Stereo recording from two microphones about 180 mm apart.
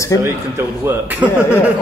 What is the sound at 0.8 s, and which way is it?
Speech, 10° right (ahead or behind).